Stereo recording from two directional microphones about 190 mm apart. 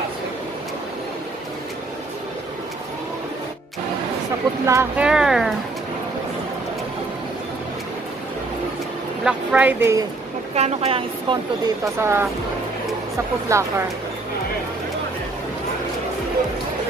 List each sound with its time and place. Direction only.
4.6 s speech: 15° right (ahead or behind)
5.0 s speech: 5° right (ahead or behind)
9.2 s speech: 5° right (ahead or behind)
10.5 s a woman's voice: 35° right (ahead or behind)
12.0 s speech: 15° right (ahead or behind)
13.5 s speech: 15° right (ahead or behind)